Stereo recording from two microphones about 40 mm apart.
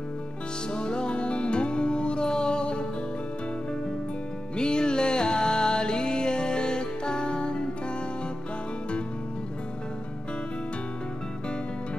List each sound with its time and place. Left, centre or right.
0.7 s music: left
4.6 s music: left